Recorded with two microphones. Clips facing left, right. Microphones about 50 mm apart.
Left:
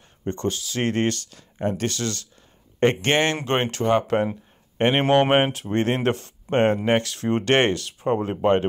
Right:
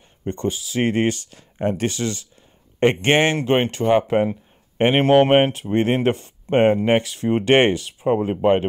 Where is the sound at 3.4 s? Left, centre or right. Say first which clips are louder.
Right 4 dB; centre.